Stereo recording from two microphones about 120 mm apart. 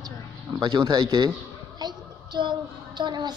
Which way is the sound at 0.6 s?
35° right (ahead or behind).